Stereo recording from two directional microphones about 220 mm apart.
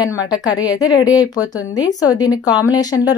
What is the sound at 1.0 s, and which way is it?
Speech, 5° right (ahead or behind).